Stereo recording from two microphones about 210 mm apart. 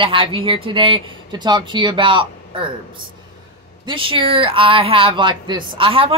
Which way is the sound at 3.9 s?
25° right (ahead or behind).